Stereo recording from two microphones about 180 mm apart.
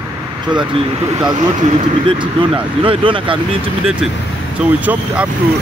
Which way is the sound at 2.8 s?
30° right (ahead or behind).